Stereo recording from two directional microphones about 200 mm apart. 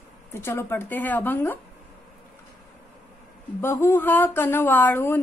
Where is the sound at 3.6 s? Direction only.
10° left (ahead or behind).